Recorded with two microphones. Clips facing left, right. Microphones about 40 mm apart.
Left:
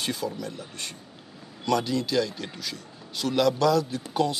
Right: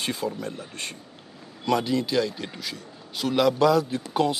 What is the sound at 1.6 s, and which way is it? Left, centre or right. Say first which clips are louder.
A man's voice: right 2 dB; centre.